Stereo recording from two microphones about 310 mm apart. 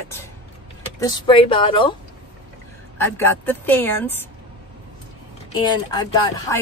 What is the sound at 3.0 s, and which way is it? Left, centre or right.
Speech, centre.